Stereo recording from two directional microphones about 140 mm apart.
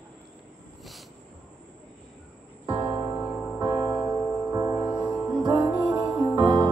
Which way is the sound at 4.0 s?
10° right (ahead or behind).